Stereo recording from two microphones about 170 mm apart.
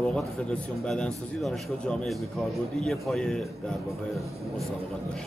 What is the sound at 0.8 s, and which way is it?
A man's voice, 5° left (ahead or behind).